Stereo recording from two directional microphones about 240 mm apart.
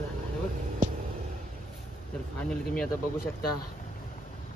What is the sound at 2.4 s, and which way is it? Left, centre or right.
Speech, centre.